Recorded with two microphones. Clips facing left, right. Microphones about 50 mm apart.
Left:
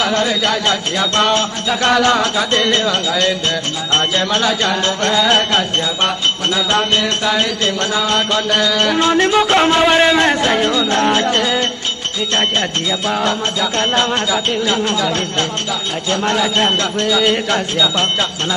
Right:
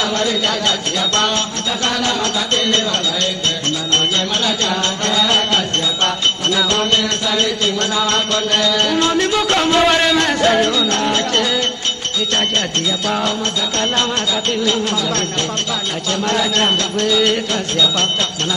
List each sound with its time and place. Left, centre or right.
2.0 s music: left
3.9 s music: left
8.8 s music: centre
9.1 s music: left
12.4 s music: centre